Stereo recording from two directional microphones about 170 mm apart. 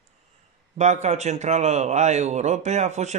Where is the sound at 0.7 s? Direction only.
40° right (ahead or behind).